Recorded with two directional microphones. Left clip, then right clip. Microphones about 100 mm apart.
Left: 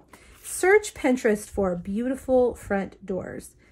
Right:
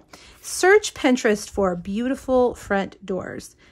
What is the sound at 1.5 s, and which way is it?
Speech, 30° right (ahead or behind).